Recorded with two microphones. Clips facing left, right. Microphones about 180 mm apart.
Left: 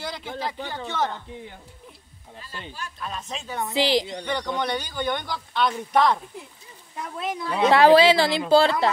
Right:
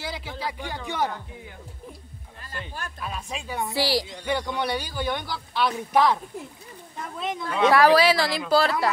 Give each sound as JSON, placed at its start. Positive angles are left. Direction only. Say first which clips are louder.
{"t": 0.0, "sound": "a man's voice", "louder": "left 1 dB", "side_deg": -5}
{"t": 2.4, "sound": "speech", "louder": "right 1 dB", "side_deg": -55}
{"t": 3.0, "sound": "speech", "louder": "left 1 dB", "side_deg": -10}
{"t": 3.7, "sound": "speech", "louder": "left 4 dB", "side_deg": 20}
{"t": 4.2, "sound": "a man's voice", "louder": "even", "side_deg": -5}
{"t": 7.2, "sound": "a man's voice", "louder": "left 1 dB", "side_deg": 0}
{"t": 7.4, "sound": "speech", "louder": "left 2 dB", "side_deg": 30}